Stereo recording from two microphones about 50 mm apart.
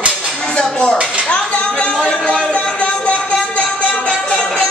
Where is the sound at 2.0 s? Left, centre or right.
Left.